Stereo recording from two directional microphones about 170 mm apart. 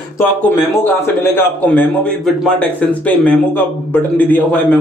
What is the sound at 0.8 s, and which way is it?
A man's voice, 15° left (ahead or behind).